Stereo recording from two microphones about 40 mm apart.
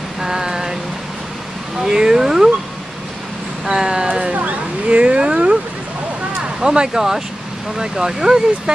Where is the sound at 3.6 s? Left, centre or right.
Centre.